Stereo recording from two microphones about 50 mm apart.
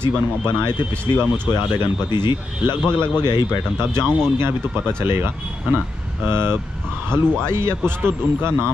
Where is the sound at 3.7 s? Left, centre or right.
Right.